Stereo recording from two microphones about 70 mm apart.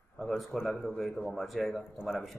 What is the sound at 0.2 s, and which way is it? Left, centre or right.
Speech, centre.